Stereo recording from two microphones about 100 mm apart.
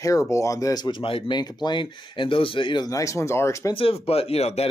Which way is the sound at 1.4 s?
45° left (ahead or behind).